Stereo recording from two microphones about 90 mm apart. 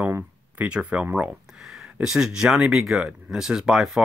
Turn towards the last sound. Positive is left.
turn(degrees=-5)  # may be behind; listen again after turning